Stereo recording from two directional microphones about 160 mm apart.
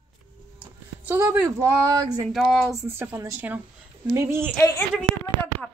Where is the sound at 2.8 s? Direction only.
15° right (ahead or behind).